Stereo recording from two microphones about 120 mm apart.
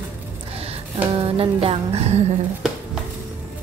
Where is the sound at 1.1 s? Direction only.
50° right (ahead or behind).